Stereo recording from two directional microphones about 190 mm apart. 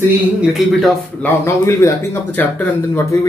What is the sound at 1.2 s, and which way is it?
Speech, 15° left (ahead or behind).